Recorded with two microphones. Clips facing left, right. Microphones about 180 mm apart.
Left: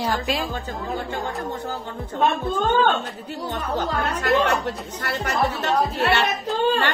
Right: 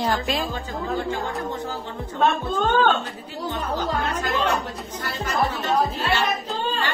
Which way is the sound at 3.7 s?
65° left (ahead or behind).